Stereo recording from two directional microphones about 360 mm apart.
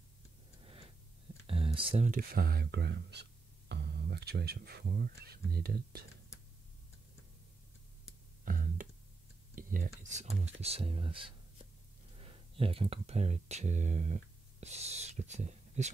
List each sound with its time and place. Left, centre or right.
0.6 s tick-tock: centre
1.5 s speech: centre
8.5 s a sound: right
9.6 s speech: right